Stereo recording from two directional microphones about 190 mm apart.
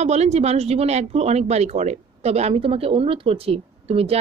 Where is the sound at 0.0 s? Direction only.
35° right (ahead or behind).